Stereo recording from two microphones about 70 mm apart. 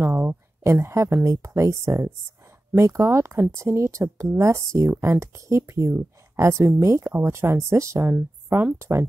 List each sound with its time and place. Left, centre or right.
0.0 s speech: right